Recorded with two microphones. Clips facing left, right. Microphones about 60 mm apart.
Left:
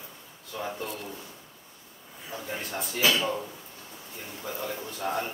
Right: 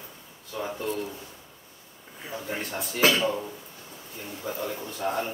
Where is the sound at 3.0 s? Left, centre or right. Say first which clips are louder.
Right 3 dB; right.